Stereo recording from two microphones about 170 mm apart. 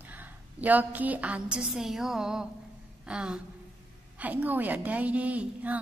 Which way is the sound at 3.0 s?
5° right (ahead or behind).